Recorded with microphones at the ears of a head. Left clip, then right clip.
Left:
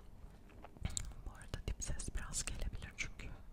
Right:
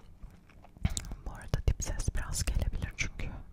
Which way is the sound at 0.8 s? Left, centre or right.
Right.